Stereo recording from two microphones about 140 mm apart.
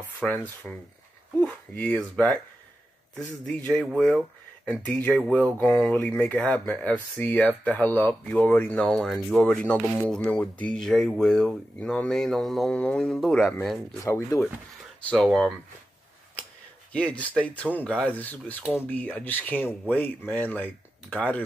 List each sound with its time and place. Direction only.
0.0 s speech: 10° left (ahead or behind)
3.4 s speech: 5° left (ahead or behind)
14.0 s speech: 20° left (ahead or behind)
15.2 s speech: centre (ahead or behind)
16.9 s speech: 10° left (ahead or behind)
18.6 s speech: 5° right (ahead or behind)
18.9 s speech: 10° left (ahead or behind)